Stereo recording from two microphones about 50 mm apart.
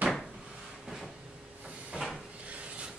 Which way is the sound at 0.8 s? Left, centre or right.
Centre.